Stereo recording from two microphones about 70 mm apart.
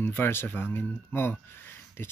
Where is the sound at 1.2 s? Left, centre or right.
Left.